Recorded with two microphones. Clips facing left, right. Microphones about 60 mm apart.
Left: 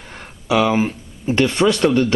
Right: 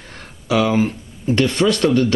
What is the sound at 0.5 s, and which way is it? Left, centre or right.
Speech, centre.